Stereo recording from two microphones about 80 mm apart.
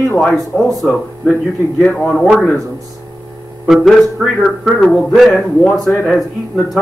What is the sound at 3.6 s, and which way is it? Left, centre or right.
Speech, centre.